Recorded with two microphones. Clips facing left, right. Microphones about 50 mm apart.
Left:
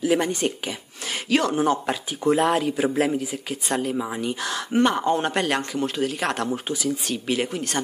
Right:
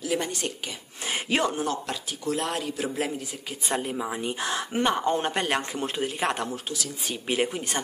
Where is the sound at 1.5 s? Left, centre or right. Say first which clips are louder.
Left 7 dB; centre.